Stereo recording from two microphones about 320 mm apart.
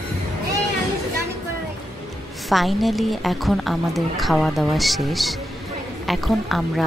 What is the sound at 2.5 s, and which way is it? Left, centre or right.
Speech, centre.